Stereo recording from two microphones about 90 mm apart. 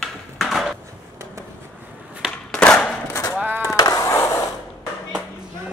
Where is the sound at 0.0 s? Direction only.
Centre (ahead or behind).